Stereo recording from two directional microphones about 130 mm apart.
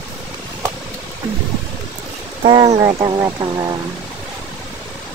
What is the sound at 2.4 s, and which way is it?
Speech, 40° right (ahead or behind).